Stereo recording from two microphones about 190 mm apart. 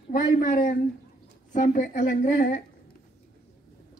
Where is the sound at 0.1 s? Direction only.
45° left (ahead or behind).